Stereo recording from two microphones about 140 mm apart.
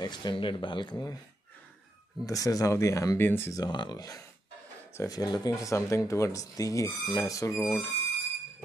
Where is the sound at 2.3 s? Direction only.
25° left (ahead or behind).